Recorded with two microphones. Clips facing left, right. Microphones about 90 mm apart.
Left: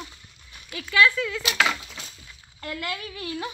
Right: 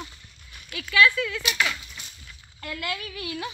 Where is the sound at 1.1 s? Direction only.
10° left (ahead or behind).